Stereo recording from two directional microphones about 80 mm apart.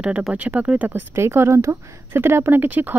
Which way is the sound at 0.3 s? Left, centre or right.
Centre.